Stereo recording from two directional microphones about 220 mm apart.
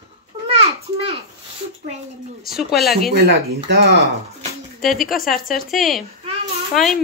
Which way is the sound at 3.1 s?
45° right (ahead or behind).